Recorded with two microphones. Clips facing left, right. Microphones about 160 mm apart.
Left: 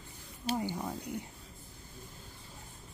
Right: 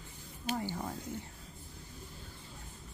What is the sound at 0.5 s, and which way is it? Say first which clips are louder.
Speech: left 2 dB; 15° left (ahead or behind).